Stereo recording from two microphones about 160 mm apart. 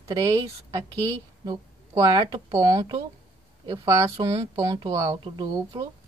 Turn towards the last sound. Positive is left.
turn(degrees=-25)  # may be behind; listen again after turning